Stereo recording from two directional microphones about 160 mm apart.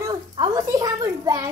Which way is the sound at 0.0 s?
25° right (ahead or behind).